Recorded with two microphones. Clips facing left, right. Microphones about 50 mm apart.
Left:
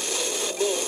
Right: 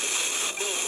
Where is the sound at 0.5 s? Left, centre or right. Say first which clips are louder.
Left 7 dB; right.